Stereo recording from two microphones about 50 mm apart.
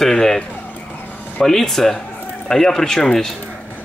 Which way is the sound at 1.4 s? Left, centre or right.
Centre.